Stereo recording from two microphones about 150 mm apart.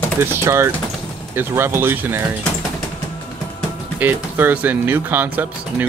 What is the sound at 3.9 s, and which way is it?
Speech, 15° right (ahead or behind).